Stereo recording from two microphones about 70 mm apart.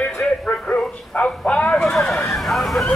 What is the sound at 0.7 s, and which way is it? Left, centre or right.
Speech, centre.